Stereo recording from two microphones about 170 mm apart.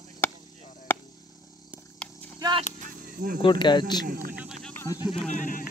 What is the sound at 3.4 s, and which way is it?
Speech, 25° left (ahead or behind).